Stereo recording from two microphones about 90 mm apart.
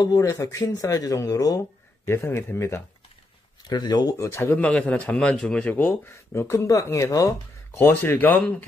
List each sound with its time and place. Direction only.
0.0 s speech: 40° left (ahead or behind)
2.0 s a man's voice: 25° left (ahead or behind)
3.6 s speech: 50° left (ahead or behind)
4.2 s speech: 30° left (ahead or behind)
4.6 s a man's voice: 15° left (ahead or behind)
6.1 s speech: 30° left (ahead or behind)
7.7 s a man's voice: 25° left (ahead or behind)